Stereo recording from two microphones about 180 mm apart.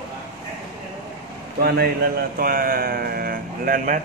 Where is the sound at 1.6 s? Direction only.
60° right (ahead or behind).